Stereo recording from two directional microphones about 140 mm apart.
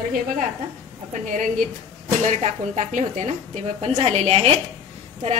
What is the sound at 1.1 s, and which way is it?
A woman's voice, 65° right (ahead or behind).